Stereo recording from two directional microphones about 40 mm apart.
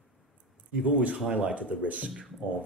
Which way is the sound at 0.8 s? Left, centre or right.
Right.